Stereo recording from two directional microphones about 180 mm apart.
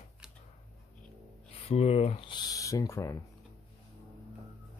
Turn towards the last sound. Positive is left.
turn(degrees=20)  # may be behind; listen again after turning